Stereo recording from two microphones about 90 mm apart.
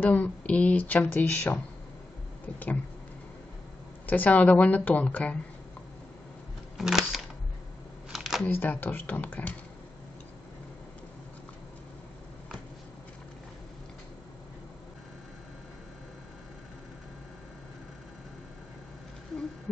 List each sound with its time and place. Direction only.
0.0 s speech: 20° left (ahead or behind)
2.4 s a sound: 20° left (ahead or behind)
4.0 s speech: 20° left (ahead or behind)
6.8 s camera: 5° right (ahead or behind)
8.5 s speech: 20° left (ahead or behind)